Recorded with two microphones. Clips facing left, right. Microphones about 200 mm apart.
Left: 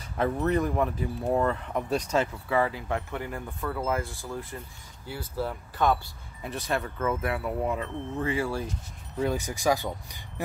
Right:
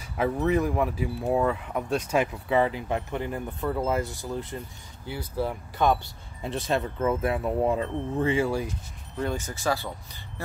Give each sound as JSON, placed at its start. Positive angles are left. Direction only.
{"t": 0.0, "sound": "speech", "side_deg": -5}
{"t": 2.1, "sound": "speech", "side_deg": -20}
{"t": 6.4, "sound": "speech", "side_deg": -25}
{"t": 9.1, "sound": "speech", "side_deg": 5}